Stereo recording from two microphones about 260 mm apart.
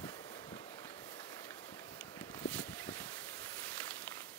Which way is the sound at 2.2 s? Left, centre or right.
Centre.